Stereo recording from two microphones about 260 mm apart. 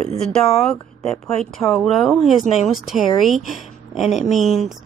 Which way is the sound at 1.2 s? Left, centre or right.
Centre.